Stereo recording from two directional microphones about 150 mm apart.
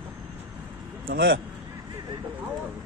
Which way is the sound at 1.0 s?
80° right.